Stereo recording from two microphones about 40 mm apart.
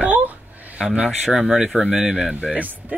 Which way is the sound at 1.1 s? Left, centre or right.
Centre.